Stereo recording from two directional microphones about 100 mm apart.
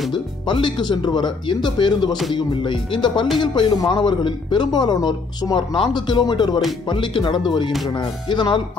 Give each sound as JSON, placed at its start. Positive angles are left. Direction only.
{"t": 0.1, "sound": "a man's voice", "side_deg": 50}